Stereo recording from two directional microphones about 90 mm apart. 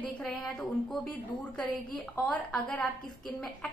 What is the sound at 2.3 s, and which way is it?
A woman's voice, 15° left (ahead or behind).